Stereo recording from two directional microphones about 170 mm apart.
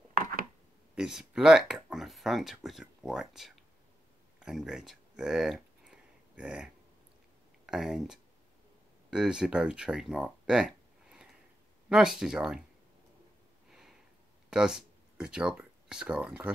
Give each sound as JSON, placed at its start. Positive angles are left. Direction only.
{"t": 0.2, "sound": "chopping", "side_deg": -55}
{"t": 0.9, "sound": "speech", "side_deg": -5}
{"t": 4.4, "sound": "a sound", "side_deg": -5}
{"t": 7.6, "sound": "speech", "side_deg": -5}
{"t": 13.7, "sound": "a sound", "side_deg": -5}
{"t": 14.5, "sound": "speech", "side_deg": -5}